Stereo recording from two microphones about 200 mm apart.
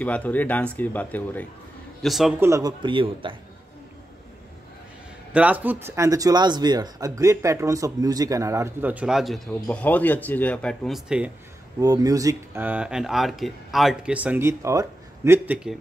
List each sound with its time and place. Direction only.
0.0 s speech: 5° left (ahead or behind)
2.4 s speech: 15° right (ahead or behind)
5.3 s speech: 5° right (ahead or behind)
11.8 s speech: 15° right (ahead or behind)